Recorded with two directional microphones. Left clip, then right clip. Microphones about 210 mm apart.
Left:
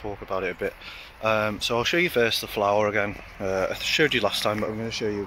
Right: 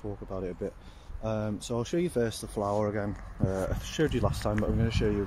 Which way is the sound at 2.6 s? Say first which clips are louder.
Left 7 dB; 5° left (ahead or behind).